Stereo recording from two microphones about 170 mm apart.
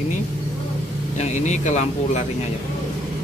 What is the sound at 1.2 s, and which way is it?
Speech, 45° left (ahead or behind).